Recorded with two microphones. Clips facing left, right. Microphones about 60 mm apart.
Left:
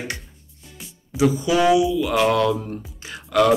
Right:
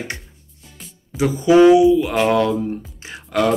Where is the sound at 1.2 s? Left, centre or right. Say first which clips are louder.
Right 6 dB; right.